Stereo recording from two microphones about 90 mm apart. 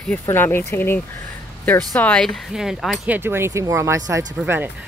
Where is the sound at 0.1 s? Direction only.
25° left (ahead or behind).